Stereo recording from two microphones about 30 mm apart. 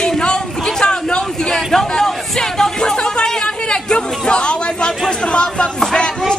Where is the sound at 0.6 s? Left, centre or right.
Left.